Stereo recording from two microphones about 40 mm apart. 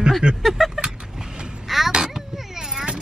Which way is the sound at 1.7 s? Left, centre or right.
Centre.